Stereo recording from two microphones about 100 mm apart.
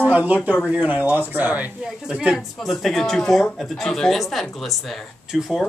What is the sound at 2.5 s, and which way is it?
Speech, centre (ahead or behind).